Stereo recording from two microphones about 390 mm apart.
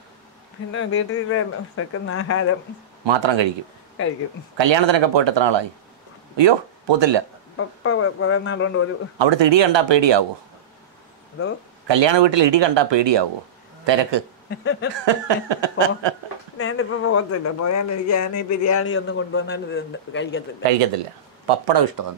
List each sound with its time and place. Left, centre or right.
0.7 s speech: left
3.1 s speech: right
4.6 s speech: right
7.5 s speech: left
9.2 s speech: right
11.9 s speech: right
14.5 s a sound: left
15.0 s speech: right
16.5 s speech: left
21.6 s speech: right